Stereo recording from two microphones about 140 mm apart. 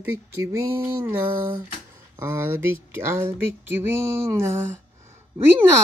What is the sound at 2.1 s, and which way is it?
Speech, 15° right (ahead or behind).